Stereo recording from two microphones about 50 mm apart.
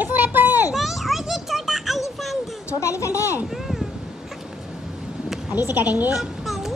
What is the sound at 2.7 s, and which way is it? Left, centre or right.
Speech, left.